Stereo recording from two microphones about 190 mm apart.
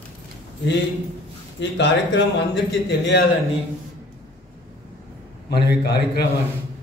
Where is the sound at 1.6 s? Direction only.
65° left (ahead or behind).